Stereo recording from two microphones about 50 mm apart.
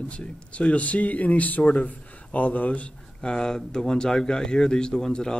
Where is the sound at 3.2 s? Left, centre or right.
Centre.